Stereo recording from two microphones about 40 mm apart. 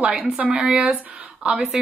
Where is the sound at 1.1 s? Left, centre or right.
Right.